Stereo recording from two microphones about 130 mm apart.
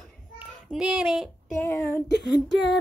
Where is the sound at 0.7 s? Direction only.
5° right (ahead or behind).